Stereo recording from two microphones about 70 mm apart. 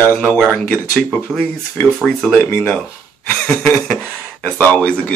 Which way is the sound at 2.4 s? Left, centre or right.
Left.